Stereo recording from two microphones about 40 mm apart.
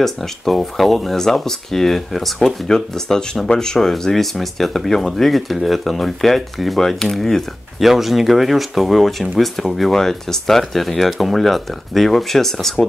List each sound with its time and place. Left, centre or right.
0.0 s speech: centre
2.4 s speech: centre
4.0 s speech: centre